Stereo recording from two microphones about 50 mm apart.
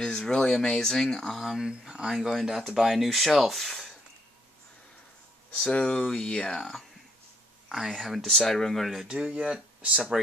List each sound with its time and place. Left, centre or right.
0.0 s speech: centre
1.4 s speech: centre
1.7 s speech: centre
5.7 s speech: centre
7.9 s speech: centre
9.0 s speech: centre